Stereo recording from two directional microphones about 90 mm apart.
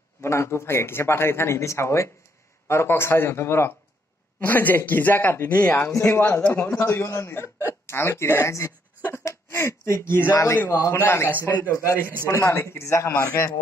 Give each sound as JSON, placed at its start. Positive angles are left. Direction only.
{"t": 0.2, "sound": "speech", "side_deg": 30}
{"t": 5.9, "sound": "a man's voice", "side_deg": 35}
{"t": 6.2, "sound": "a man's voice", "side_deg": 15}
{"t": 6.5, "sound": "a man's voice", "side_deg": 30}
{"t": 11.0, "sound": "speech", "side_deg": 25}
{"t": 11.7, "sound": "a man's voice", "side_deg": 35}